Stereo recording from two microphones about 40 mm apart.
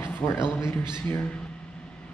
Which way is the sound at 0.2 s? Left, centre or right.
Left.